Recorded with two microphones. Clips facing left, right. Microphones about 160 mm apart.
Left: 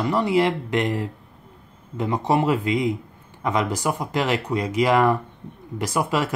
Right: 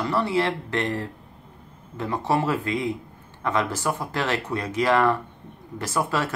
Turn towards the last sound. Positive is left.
turn(degrees=15)  # may be behind; listen again after turning